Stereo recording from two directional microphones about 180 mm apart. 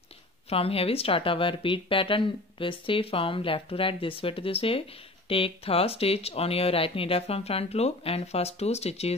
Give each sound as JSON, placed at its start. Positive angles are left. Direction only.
{"t": 0.5, "sound": "speech", "side_deg": 30}